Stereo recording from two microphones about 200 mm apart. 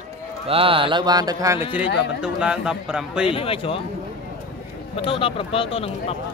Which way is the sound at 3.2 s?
30° left (ahead or behind).